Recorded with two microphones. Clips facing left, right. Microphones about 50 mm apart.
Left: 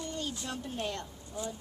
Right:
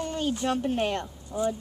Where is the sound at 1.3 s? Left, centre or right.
Right.